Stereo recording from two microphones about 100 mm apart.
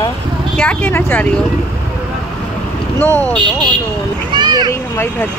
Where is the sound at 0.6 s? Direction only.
15° left (ahead or behind).